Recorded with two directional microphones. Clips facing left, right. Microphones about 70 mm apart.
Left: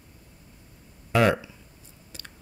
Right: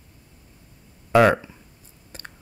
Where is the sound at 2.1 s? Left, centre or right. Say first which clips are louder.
Right 5 dB; right.